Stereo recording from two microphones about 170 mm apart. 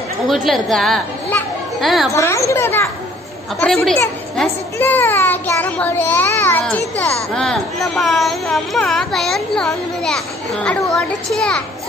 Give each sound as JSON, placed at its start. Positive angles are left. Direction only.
{"t": 0.3, "sound": "a child's voice", "side_deg": 0}
{"t": 2.1, "sound": "a child's voice", "side_deg": 15}
{"t": 3.6, "sound": "a child's voice", "side_deg": 0}
{"t": 7.3, "sound": "speech", "side_deg": 0}